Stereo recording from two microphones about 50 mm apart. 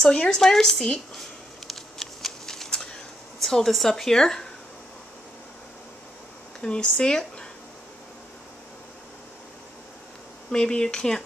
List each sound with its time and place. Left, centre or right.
0.1 s speech: centre
1.7 s shuffling cards: centre
3.4 s speech: centre
6.6 s speech: centre
10.5 s speech: centre